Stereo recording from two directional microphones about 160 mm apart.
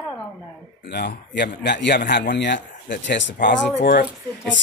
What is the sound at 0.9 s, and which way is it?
Speech, 90° left.